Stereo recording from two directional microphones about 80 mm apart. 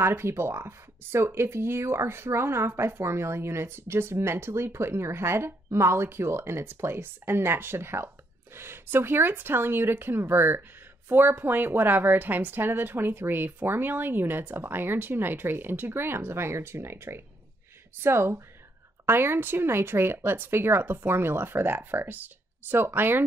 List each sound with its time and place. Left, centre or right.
0.0 s a woman's voice: right